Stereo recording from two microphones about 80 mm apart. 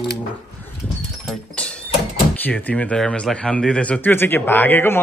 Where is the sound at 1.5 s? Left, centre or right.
Centre.